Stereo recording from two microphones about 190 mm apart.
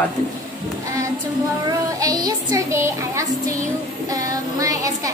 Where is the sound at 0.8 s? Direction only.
15° right (ahead or behind).